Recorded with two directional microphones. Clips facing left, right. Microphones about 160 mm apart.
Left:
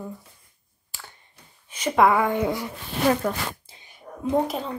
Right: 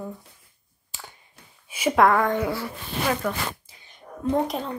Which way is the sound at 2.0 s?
5° left (ahead or behind).